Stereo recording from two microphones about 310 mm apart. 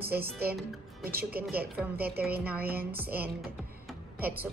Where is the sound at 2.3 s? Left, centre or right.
Centre.